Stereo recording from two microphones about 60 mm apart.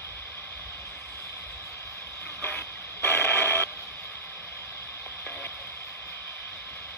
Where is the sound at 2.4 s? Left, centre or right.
Left.